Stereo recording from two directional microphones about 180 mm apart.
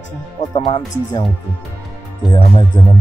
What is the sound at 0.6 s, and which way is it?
Speech, 25° left (ahead or behind).